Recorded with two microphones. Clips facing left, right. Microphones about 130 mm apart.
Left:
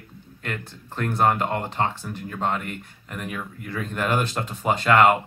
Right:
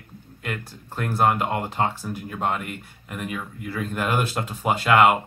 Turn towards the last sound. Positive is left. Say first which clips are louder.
# even
turn(degrees=-10)  # may be behind; listen again after turning